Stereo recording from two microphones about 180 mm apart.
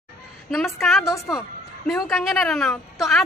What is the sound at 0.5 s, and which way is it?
A woman's voice, centre (ahead or behind).